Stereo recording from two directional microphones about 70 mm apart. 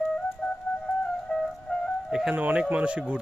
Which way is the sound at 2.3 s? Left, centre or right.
Right.